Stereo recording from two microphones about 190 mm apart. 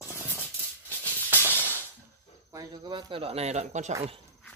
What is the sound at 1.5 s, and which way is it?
Music, 10° left (ahead or behind).